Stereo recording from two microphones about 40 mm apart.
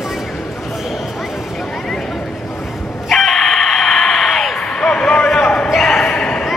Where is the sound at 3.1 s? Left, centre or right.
Centre.